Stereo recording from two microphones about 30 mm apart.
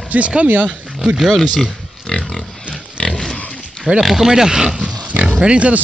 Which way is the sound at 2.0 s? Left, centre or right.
Left.